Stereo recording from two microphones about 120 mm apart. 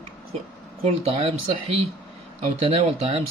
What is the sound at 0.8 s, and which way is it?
Speech, 60° right (ahead or behind).